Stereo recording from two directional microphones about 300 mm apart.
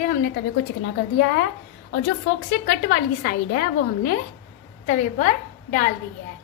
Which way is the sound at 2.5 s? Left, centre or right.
Left.